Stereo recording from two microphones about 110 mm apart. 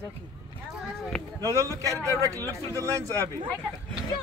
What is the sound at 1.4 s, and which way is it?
Speech, 30° right (ahead or behind).